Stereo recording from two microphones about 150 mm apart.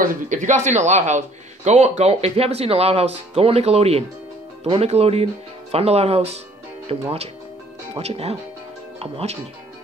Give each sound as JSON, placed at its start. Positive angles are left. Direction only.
{"t": 0.0, "sound": "a man's voice", "side_deg": -55}